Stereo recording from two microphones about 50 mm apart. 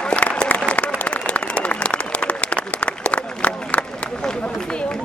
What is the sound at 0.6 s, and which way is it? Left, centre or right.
Applause, left.